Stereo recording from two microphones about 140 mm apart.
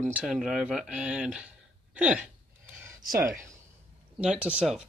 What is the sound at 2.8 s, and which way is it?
Speech, 20° right (ahead or behind).